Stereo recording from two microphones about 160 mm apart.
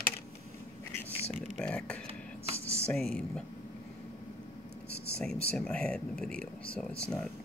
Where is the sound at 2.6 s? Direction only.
15° right (ahead or behind).